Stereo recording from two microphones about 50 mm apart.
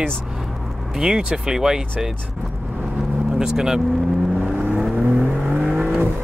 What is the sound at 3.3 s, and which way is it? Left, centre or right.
Speech, centre.